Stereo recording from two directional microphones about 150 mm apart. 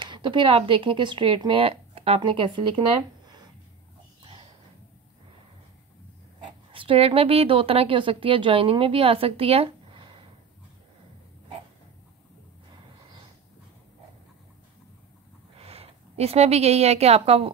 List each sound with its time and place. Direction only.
0.0 s a woman's voice: 30° right (ahead or behind)
4.2 s a sound: 30° right (ahead or behind)
6.7 s a woman's voice: 35° right (ahead or behind)
15.5 s a woman's voice: 40° right (ahead or behind)